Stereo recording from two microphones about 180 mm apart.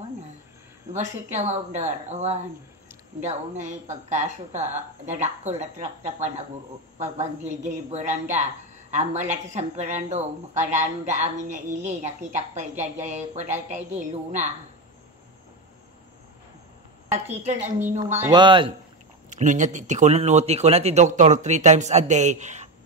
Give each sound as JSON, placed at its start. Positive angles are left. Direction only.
{"t": 0.9, "sound": "speech", "side_deg": -40}
{"t": 7.0, "sound": "speech", "side_deg": -40}
{"t": 17.4, "sound": "speech", "side_deg": -40}
{"t": 17.7, "sound": "speech", "side_deg": -10}
{"t": 18.3, "sound": "speech", "side_deg": -25}
{"t": 19.3, "sound": "speech", "side_deg": -45}